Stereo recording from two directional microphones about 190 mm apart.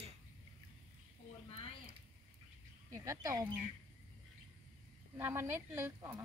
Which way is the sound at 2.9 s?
15° right (ahead or behind).